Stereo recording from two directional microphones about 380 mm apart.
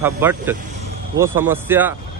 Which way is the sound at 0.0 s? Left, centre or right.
Centre.